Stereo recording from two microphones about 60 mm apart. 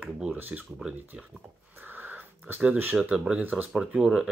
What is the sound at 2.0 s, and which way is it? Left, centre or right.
Sniff, right.